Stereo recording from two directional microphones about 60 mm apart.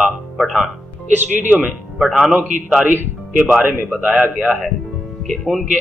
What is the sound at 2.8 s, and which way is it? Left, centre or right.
A man's voice, right.